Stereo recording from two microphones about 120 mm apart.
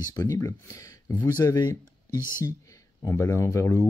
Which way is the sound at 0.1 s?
25° left (ahead or behind).